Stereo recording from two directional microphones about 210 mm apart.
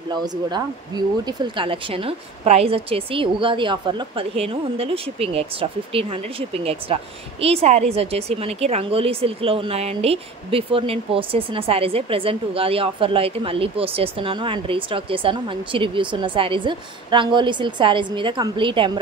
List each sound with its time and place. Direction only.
0.1 s a woman's voice: 20° right (ahead or behind)